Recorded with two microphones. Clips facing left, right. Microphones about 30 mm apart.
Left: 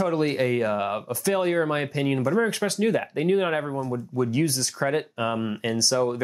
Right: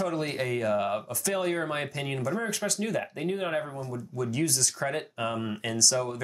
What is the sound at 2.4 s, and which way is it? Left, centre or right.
Speech, left.